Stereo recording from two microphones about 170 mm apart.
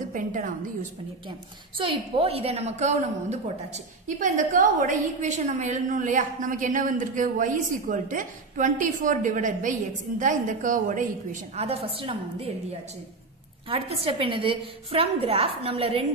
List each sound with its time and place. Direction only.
0.1 s a woman's voice: 50° right (ahead or behind)
1.8 s a woman's voice: 35° right (ahead or behind); by 11.1 s 50° right (ahead or behind)
11.5 s a woman's voice: 35° right (ahead or behind)
13.7 s a woman's voice: 35° right (ahead or behind)